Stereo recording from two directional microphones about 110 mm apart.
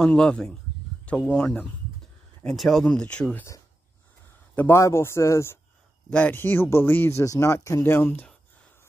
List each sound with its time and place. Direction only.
0.0 s speech: 10° left (ahead or behind)
4.6 s speech: 25° left (ahead or behind)
6.0 s speech: 10° left (ahead or behind)